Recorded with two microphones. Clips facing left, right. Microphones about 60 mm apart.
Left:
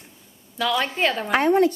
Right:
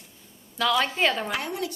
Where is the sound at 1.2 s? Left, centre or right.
Left.